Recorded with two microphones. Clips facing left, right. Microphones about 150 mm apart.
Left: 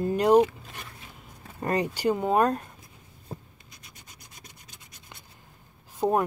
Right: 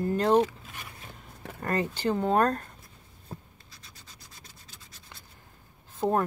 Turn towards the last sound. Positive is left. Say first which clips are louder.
# left 2 dB
turn(degrees=15)  # may be behind; listen again after turning